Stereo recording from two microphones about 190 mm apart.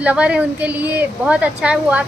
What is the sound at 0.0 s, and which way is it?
A woman's voice, 5° right (ahead or behind).